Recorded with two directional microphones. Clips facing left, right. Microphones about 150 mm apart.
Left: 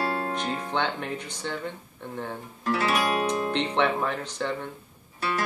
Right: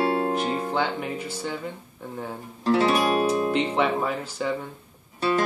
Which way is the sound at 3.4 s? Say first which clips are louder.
Right 2 dB; 5° right (ahead or behind).